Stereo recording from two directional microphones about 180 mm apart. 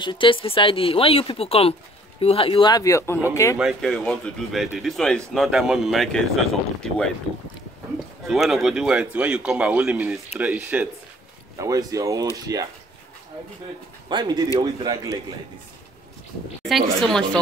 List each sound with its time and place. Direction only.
0.0 s speech: 25° left (ahead or behind)
3.5 s speech: centre (ahead or behind)
8.3 s speech: centre (ahead or behind); by 12.6 s 20° right (ahead or behind)
14.0 s speech: 25° right (ahead or behind)
16.6 s speech: centre (ahead or behind)